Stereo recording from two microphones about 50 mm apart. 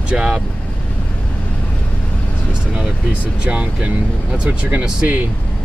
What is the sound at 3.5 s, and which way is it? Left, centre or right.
Speech, right.